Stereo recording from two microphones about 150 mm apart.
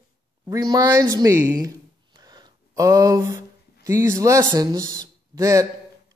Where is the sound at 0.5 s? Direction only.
25° right (ahead or behind).